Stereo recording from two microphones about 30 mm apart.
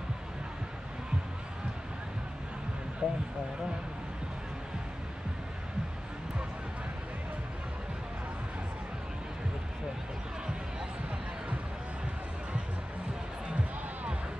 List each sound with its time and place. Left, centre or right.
3.0 s speech: right